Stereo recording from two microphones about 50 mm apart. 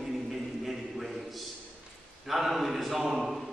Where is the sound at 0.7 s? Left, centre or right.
Centre.